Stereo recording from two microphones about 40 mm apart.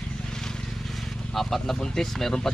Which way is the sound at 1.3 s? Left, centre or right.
Centre.